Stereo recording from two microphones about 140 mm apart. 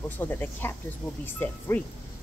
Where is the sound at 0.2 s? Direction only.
15° left (ahead or behind).